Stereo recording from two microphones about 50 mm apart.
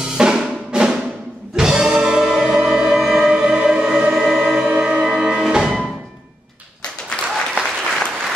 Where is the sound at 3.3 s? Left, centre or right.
Centre.